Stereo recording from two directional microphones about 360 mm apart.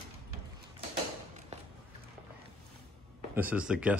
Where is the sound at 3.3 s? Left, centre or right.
Centre.